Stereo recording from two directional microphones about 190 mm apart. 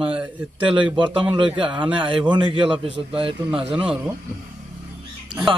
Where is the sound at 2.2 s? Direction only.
25° right (ahead or behind).